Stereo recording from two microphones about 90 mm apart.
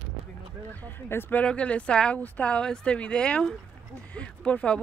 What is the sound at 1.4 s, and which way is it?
Speech, 15° left (ahead or behind).